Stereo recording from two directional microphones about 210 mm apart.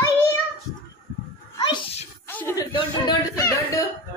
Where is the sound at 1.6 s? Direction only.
20° left (ahead or behind).